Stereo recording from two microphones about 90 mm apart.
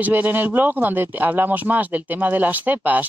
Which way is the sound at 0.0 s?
20° right (ahead or behind).